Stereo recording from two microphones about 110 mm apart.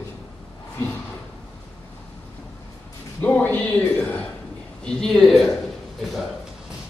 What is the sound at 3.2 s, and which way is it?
A man's voice, 15° left (ahead or behind).